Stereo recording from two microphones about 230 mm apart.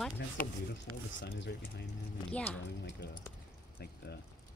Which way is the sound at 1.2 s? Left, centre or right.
Left.